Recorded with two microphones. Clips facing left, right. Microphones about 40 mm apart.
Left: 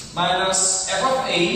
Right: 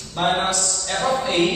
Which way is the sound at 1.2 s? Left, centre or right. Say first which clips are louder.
Right 1 dB; left.